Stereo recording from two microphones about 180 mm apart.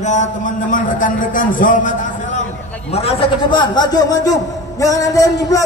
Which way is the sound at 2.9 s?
35° left (ahead or behind).